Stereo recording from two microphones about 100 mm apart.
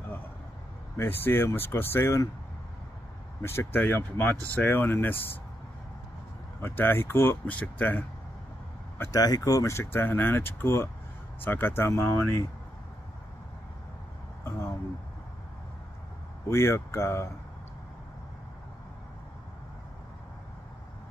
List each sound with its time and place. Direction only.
0.9 s speech: 20° left (ahead or behind)
3.4 s speech: 20° left (ahead or behind)
6.6 s speech: 20° left (ahead or behind)
9.1 s speech: 40° left (ahead or behind)
16.4 s speech: 25° left (ahead or behind)